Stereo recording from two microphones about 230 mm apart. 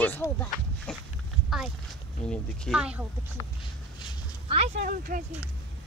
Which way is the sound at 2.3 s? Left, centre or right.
Centre.